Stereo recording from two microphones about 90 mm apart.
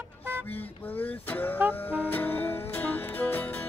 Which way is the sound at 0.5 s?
20° left (ahead or behind).